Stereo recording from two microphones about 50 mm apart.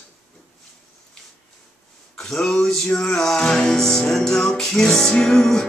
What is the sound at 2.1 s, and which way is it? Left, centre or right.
Music, centre.